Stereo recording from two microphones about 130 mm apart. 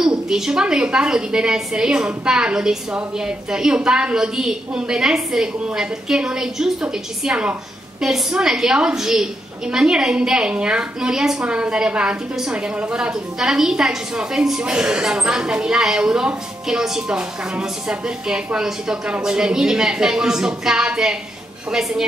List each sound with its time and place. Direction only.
0.0 s a woman's voice: 5° right (ahead or behind)